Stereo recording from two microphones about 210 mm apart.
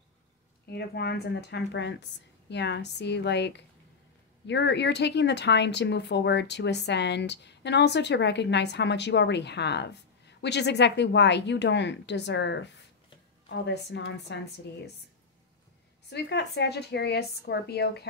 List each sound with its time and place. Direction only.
0.7 s speech: 50° left (ahead or behind)
16.1 s speech: 55° left (ahead or behind)